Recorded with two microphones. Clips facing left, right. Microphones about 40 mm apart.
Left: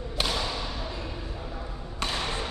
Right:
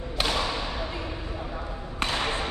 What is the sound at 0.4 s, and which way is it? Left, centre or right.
Thump, right.